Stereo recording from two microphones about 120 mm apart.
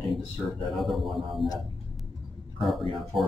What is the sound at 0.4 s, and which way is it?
A man's voice, 5° left (ahead or behind).